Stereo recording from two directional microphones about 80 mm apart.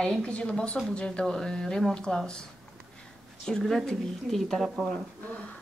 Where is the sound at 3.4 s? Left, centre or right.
Centre.